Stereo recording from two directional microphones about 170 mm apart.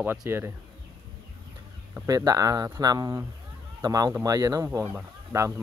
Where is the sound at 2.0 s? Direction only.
20° right (ahead or behind).